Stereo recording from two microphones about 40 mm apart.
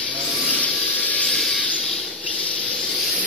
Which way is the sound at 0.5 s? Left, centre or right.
Left.